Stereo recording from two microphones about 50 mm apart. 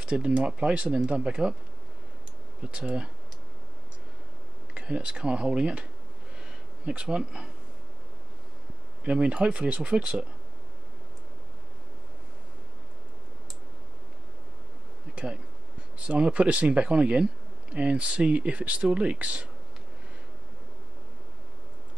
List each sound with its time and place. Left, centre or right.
0.0 s speech: right
2.6 s speech: centre
4.7 s speech: centre
6.9 s speech: right
9.0 s speech: right
16.0 s speech: right